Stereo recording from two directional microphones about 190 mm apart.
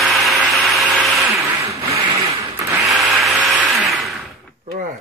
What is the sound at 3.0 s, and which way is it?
Vehicle, centre (ahead or behind).